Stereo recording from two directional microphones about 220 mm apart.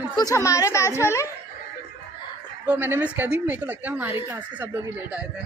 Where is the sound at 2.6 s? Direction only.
10° right (ahead or behind).